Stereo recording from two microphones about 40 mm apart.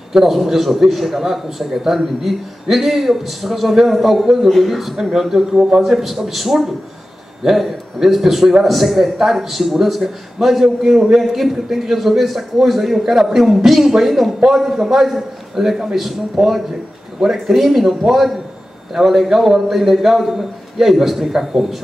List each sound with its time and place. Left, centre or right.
0.1 s a man's voice: centre
5.5 s a man's voice: centre
5.9 s a man's voice: centre